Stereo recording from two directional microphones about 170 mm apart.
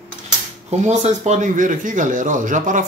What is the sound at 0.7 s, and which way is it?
Speech, 45° right (ahead or behind).